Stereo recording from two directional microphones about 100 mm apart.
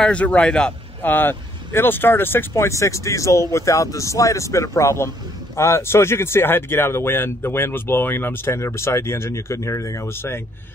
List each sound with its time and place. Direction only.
0.0 s speech: 10° left (ahead or behind)